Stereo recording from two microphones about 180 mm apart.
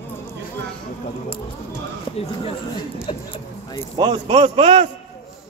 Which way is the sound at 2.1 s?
30° left (ahead or behind).